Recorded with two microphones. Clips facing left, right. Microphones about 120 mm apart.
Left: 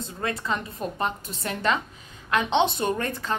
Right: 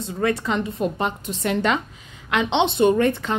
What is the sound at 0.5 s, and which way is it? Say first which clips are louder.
Speech: right 5 dB; 25° right (ahead or behind).